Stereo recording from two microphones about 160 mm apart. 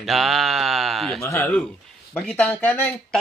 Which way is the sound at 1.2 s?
15° left (ahead or behind).